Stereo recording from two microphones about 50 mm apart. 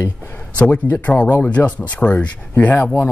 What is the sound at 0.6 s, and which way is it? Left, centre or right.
Speech, left.